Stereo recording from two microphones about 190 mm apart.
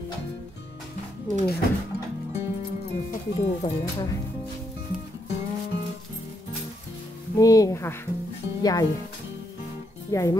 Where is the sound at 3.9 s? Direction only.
20° left (ahead or behind).